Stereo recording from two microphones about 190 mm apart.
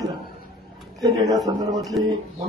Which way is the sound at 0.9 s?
20° right (ahead or behind).